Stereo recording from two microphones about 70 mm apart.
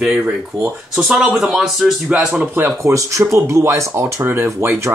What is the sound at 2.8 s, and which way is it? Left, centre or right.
Speech, right.